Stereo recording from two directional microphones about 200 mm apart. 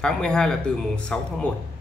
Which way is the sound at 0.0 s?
5° left (ahead or behind).